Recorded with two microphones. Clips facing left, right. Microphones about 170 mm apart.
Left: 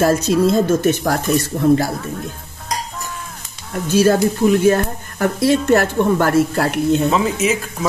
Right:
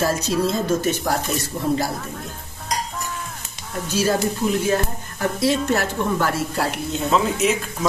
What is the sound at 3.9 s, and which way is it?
Speech, 55° left (ahead or behind).